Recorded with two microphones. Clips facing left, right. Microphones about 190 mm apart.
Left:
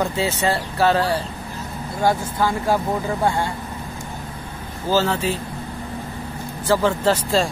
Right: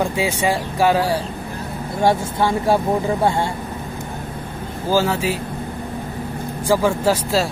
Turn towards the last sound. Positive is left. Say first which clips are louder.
# right 1 dB
turn(degrees=-5)  # may be behind; listen again after turning